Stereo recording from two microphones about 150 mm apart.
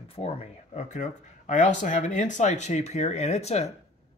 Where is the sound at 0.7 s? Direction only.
55° left (ahead or behind).